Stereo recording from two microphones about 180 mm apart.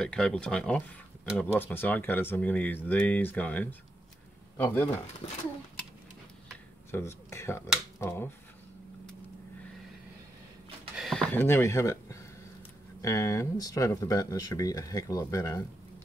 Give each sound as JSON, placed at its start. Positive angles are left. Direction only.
{"t": 0.0, "sound": "speech", "side_deg": 5}
{"t": 6.9, "sound": "speech", "side_deg": 15}
{"t": 11.0, "sound": "a sound", "side_deg": 0}
{"t": 11.3, "sound": "speech", "side_deg": 10}